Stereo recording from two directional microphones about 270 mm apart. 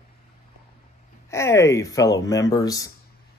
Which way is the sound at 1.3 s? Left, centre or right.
Centre.